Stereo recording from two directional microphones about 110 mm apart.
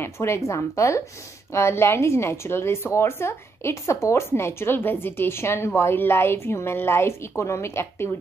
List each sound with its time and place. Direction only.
0.0 s a woman's voice: 25° left (ahead or behind)